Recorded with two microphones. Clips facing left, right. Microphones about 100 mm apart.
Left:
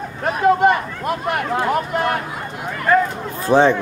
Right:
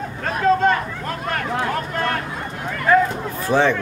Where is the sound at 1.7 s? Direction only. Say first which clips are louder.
Left 4 dB; 15° left (ahead or behind).